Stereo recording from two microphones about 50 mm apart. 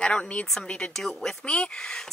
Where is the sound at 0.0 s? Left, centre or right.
Centre.